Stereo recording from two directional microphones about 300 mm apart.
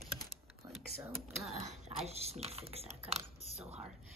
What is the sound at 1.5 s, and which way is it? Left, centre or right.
Speech, right.